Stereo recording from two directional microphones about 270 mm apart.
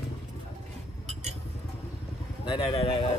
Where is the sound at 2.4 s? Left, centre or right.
Centre.